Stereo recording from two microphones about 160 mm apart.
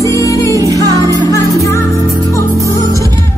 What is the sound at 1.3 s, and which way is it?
Music, 20° left (ahead or behind).